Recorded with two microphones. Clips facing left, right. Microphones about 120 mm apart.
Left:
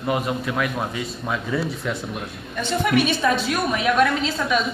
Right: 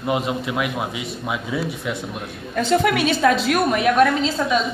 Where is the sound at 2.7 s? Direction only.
90° right.